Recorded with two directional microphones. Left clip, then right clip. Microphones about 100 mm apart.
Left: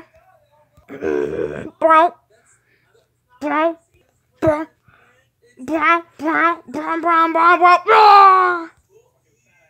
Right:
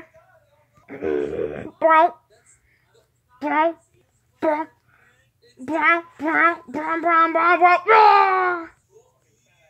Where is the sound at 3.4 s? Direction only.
50° left (ahead or behind).